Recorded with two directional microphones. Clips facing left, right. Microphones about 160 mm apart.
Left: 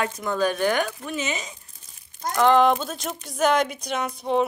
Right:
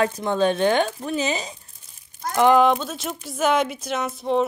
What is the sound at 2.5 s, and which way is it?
Speech, centre (ahead or behind).